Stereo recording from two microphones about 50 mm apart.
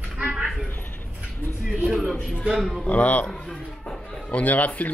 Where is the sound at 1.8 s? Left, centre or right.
Centre.